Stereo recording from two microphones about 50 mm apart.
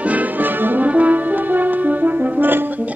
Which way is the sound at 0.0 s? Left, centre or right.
Right.